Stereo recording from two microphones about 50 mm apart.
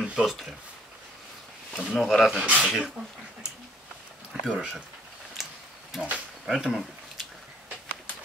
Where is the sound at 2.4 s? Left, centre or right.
Right.